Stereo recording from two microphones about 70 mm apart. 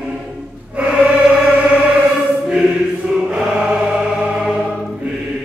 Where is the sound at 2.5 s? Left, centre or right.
Centre.